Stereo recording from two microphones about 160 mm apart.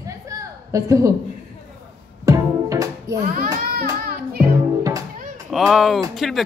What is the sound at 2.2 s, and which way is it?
Music, 20° right (ahead or behind).